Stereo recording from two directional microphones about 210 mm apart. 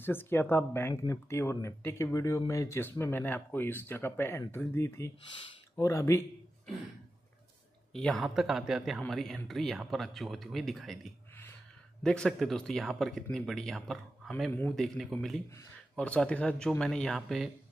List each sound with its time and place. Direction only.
0.0 s speech: 10° left (ahead or behind)
7.9 s speech: centre (ahead or behind)